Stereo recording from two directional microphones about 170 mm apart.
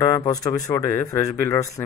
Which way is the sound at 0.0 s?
20° left (ahead or behind).